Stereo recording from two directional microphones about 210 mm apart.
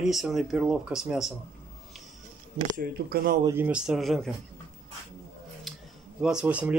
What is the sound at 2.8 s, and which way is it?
Speech, 45° right (ahead or behind).